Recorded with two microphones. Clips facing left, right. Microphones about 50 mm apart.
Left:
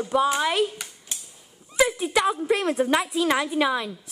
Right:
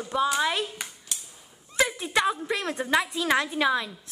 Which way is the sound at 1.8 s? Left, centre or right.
Centre.